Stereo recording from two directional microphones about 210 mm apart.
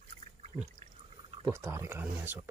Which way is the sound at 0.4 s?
30° right (ahead or behind).